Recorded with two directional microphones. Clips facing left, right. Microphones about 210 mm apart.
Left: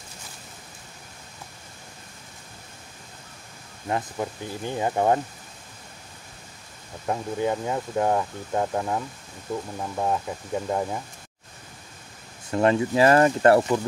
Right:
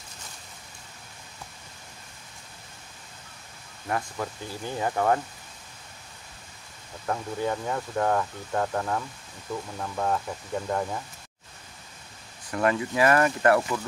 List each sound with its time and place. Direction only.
3.9 s speech: 20° left (ahead or behind)
7.1 s speech: 20° left (ahead or behind)
12.4 s speech: 25° left (ahead or behind)